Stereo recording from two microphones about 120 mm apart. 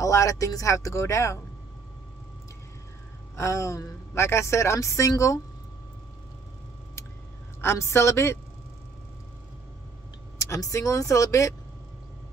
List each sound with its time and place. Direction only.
0.0 s a woman's voice: 25° left (ahead or behind)
3.3 s a woman's voice: 25° left (ahead or behind)
7.6 s a woman's voice: 20° left (ahead or behind)
10.4 s a woman's voice: 25° left (ahead or behind)